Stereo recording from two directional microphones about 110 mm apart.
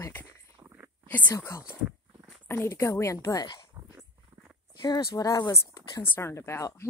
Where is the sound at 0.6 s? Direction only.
20° right (ahead or behind).